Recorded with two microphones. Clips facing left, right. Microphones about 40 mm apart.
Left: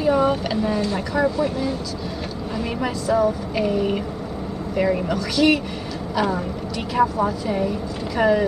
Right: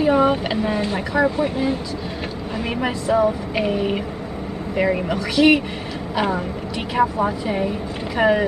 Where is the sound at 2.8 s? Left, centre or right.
Right.